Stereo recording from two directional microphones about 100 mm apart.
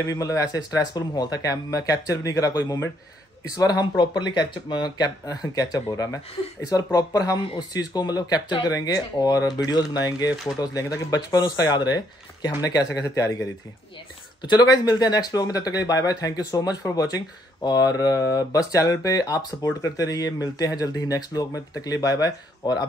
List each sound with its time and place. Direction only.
0.0 s speech: 35° left (ahead or behind)
14.4 s speech: 45° left (ahead or behind)